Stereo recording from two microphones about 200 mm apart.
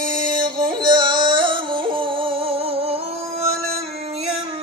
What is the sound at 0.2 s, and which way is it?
Music, 20° right (ahead or behind).